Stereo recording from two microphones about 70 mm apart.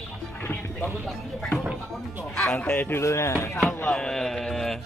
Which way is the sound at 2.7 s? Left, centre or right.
Left.